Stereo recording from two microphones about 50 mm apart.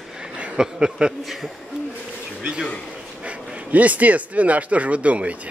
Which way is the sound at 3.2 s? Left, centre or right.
Right.